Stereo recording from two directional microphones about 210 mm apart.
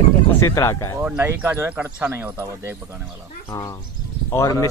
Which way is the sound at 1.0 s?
10° right (ahead or behind).